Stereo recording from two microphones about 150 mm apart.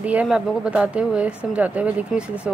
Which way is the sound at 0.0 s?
10° right (ahead or behind).